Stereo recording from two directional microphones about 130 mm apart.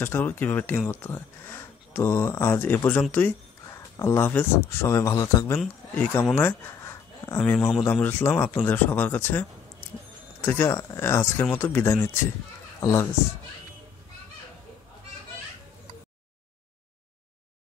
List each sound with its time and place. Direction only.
0.0 s speech: 15° left (ahead or behind)
3.7 s speech: 20° left (ahead or behind)